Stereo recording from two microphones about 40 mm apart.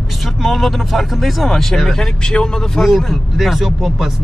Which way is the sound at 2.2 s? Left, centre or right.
Centre.